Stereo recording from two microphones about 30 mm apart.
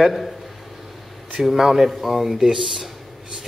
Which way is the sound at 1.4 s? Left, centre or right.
Centre.